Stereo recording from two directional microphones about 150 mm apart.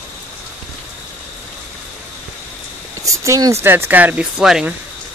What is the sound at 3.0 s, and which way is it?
Speech, 20° right (ahead or behind).